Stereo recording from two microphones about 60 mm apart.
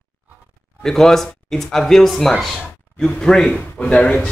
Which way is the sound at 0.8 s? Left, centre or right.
Centre.